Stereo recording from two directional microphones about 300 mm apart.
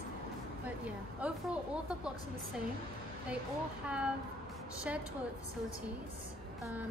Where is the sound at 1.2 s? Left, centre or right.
Centre.